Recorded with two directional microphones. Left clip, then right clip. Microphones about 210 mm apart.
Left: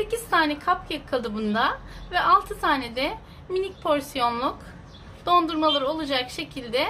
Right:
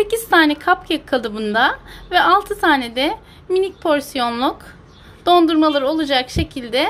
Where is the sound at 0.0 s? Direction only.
40° right (ahead or behind).